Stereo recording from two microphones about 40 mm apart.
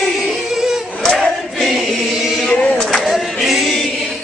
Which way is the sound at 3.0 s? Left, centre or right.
Centre.